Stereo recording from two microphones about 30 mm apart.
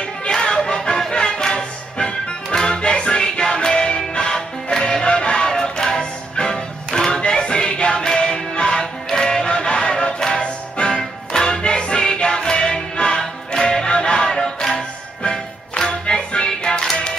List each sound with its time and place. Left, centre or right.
0.0 s a sound: left
1.1 s music: left
14.3 s music: centre
15.9 s music: left